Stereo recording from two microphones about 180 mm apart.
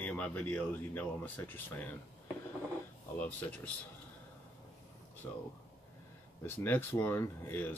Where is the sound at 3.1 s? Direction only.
10° left (ahead or behind).